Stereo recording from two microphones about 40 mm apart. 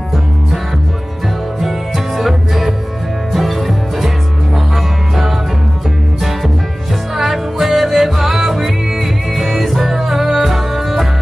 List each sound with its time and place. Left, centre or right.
2.1 s music: centre
7.2 s music: centre